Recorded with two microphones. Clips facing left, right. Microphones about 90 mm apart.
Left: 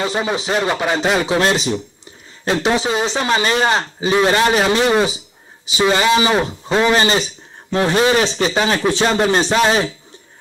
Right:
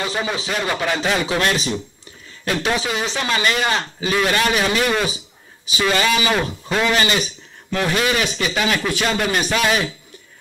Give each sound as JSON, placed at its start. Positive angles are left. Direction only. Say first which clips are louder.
{"t": 0.0, "sound": "a man's voice", "louder": "left 4 dB", "side_deg": 25}